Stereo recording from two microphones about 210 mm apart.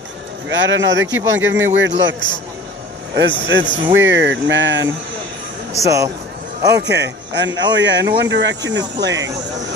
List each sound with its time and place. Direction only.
0.5 s a man's voice: 60° right (ahead or behind)
3.4 s a man's voice: 60° right (ahead or behind)
5.8 s speech: 15° right (ahead or behind)
6.9 s a man's voice: 55° right (ahead or behind)